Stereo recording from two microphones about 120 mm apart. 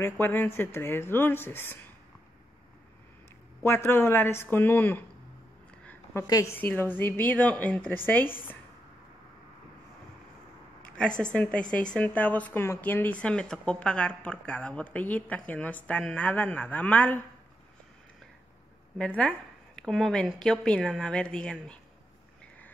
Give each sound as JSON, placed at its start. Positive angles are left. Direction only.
{"t": 0.0, "sound": "speech", "side_deg": 20}
{"t": 3.6, "sound": "speech", "side_deg": 20}
{"t": 6.2, "sound": "speech", "side_deg": 30}
{"t": 6.8, "sound": "speech", "side_deg": 20}
{"t": 11.0, "sound": "speech", "side_deg": 10}
{"t": 18.9, "sound": "speech", "side_deg": 10}